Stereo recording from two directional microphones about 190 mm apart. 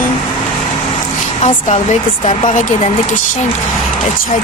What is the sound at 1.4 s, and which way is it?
Speech, 35° left (ahead or behind).